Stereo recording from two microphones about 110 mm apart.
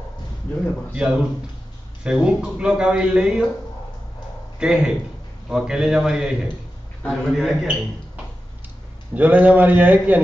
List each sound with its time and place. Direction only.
0.9 s speech: 10° right (ahead or behind)
4.6 s a man's voice: 5° right (ahead or behind)
9.1 s speech: 15° right (ahead or behind)